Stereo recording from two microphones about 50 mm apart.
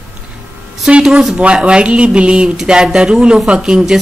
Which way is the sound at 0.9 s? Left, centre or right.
Centre.